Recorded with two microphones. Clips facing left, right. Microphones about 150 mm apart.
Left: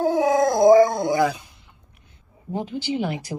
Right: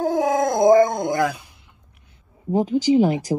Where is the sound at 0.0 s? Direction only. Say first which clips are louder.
Left 1 dB; 5° left (ahead or behind).